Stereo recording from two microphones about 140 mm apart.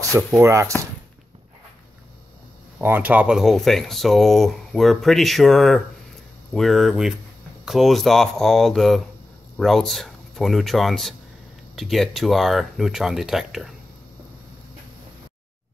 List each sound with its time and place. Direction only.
0.4 s speech: 20° right (ahead or behind)
2.8 s speech: 15° right (ahead or behind)